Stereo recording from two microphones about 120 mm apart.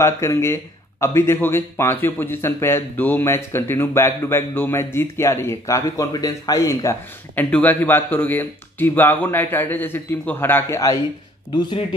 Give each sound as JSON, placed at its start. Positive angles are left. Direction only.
{"t": 0.0, "sound": "speech", "side_deg": 20}
{"t": 7.3, "sound": "speech", "side_deg": 15}